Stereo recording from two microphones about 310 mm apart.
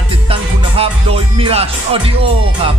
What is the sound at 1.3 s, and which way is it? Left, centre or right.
Speech, centre.